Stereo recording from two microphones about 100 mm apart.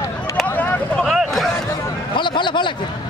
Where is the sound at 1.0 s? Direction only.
Centre (ahead or behind).